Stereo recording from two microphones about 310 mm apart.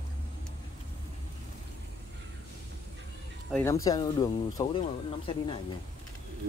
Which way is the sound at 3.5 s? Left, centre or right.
Centre.